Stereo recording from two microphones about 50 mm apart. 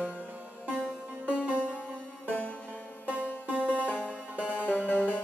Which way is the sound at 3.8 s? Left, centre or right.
Left.